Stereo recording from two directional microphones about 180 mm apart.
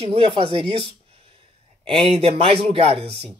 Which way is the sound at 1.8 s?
30° right (ahead or behind).